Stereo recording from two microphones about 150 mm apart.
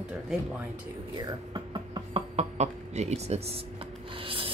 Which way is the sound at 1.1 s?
30° right (ahead or behind).